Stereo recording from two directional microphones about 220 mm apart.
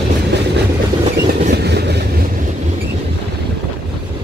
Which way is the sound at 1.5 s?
50° right (ahead or behind).